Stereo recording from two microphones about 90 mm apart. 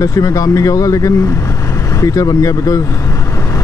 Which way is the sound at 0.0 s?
40° left (ahead or behind).